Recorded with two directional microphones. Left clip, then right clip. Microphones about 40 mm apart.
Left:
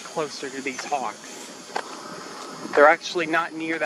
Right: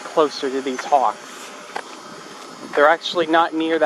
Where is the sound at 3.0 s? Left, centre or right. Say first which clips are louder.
Right 7 dB; right.